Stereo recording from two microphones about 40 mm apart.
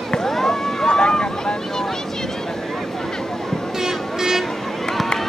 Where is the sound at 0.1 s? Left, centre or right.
Centre.